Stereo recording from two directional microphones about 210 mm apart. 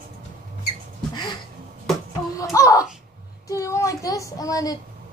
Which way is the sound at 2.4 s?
15° left (ahead or behind).